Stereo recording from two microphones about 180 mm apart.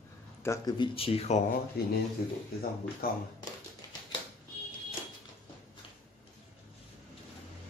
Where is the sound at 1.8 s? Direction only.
60° left (ahead or behind).